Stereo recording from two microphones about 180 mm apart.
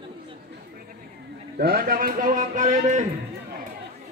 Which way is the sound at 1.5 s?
55° right (ahead or behind).